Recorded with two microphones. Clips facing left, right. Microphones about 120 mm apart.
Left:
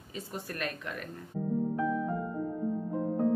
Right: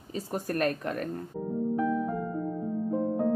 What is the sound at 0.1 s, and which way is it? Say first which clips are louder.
Speech: right 8 dB; 45° right (ahead or behind).